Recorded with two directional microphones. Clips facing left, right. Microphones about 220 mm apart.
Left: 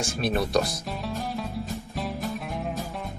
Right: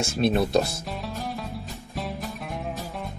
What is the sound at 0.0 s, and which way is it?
Speech, 25° right (ahead or behind).